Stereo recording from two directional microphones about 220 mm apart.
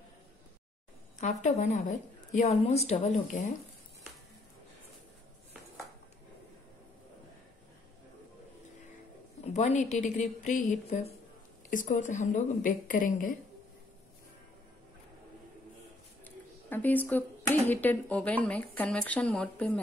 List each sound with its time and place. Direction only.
1.2 s a woman's voice: 35° left (ahead or behind)
9.4 s a woman's voice: 30° left (ahead or behind)
16.3 s speech: 10° left (ahead or behind)